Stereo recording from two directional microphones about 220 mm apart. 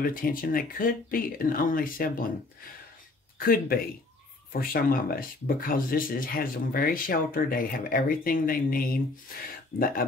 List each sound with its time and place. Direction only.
0.0 s speech: 40° left (ahead or behind)
3.3 s speech: 40° left (ahead or behind)